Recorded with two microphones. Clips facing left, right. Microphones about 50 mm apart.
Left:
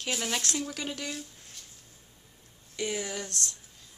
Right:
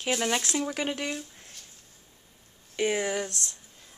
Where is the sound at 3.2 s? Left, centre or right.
Centre.